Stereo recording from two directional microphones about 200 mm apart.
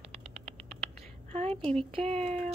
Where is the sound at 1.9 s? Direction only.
30° right (ahead or behind).